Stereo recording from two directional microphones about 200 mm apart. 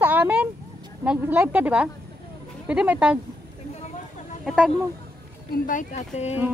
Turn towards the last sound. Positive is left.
turn(degrees=35)  # may be behind; listen again after turning